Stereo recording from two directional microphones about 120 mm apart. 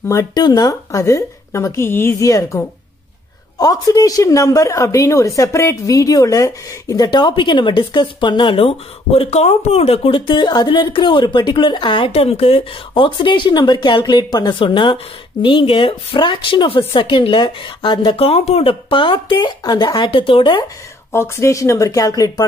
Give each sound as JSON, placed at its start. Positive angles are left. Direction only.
{"t": 0.1, "sound": "a woman's voice", "side_deg": 30}
{"t": 12.1, "sound": "speech", "side_deg": 55}
{"t": 18.1, "sound": "speech", "side_deg": 55}
{"t": 21.1, "sound": "speech", "side_deg": 20}